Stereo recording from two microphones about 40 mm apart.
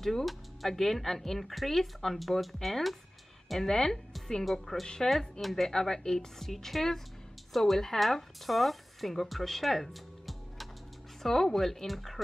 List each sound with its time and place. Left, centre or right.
0.0 s speech: centre
3.6 s speech: centre
4.5 s speech: centre
4.8 s speech: centre
5.4 s speech: centre
5.7 s speech: centre